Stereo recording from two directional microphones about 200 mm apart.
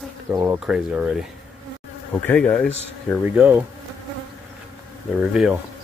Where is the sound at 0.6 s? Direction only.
5° right (ahead or behind).